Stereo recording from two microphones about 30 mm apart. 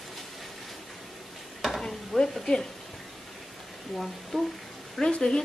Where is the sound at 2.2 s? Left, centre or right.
Left.